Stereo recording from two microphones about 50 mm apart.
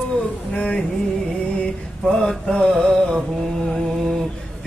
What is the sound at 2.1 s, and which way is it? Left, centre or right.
Mantra, centre.